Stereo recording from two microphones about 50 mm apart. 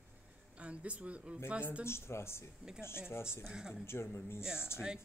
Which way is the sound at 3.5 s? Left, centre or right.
Centre.